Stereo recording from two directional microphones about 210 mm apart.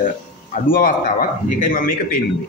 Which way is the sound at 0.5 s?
40° left (ahead or behind).